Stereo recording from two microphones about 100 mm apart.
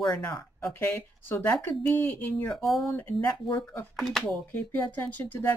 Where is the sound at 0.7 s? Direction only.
25° left (ahead or behind).